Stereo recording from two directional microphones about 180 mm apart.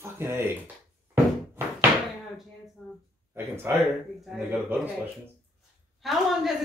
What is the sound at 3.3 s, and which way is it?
A woman's voice, 10° right (ahead or behind).